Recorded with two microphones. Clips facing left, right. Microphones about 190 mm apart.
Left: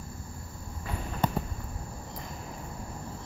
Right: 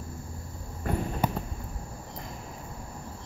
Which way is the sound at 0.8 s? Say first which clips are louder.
Right 8 dB; 50° right (ahead or behind).